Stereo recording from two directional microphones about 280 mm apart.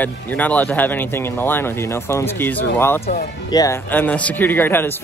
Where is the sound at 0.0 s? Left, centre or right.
Centre.